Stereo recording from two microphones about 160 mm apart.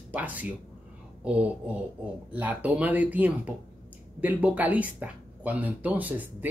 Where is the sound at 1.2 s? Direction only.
10° right (ahead or behind).